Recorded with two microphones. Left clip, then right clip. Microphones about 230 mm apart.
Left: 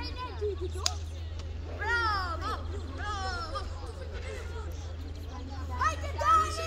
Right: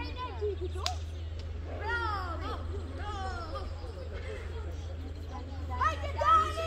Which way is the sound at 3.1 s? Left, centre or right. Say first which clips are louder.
Left 4 dB; left.